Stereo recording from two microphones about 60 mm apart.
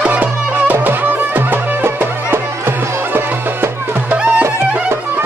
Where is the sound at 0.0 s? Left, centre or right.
Right.